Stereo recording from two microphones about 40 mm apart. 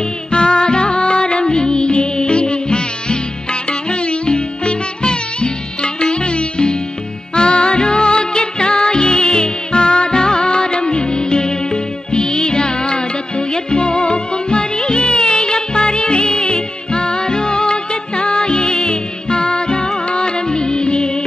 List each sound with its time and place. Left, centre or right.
0.3 s music: left